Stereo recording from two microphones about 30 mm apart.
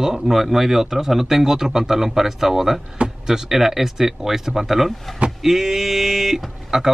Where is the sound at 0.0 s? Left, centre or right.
Centre.